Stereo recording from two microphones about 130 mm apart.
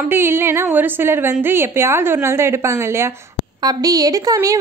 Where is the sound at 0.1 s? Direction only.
20° right (ahead or behind).